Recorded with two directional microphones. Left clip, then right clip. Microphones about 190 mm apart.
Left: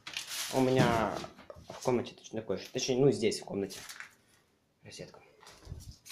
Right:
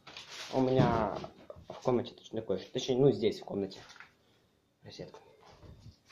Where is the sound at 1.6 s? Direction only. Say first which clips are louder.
Even; 15° left (ahead or behind).